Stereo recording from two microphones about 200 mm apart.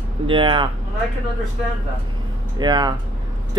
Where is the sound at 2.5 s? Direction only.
20° right (ahead or behind).